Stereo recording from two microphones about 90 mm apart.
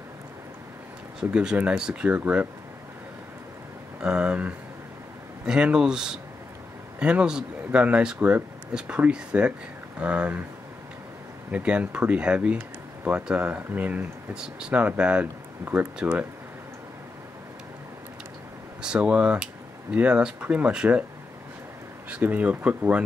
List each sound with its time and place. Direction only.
1.3 s speech: 10° right (ahead or behind)
4.0 s speech: 10° right (ahead or behind)
11.5 s speech: 15° right (ahead or behind)
15.6 s speech: 20° right (ahead or behind)
18.8 s speech: 10° right (ahead or behind)
22.1 s speech: 15° right (ahead or behind)